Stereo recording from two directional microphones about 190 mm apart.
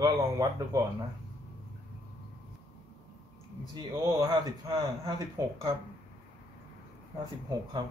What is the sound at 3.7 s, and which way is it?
Speech, 20° right (ahead or behind).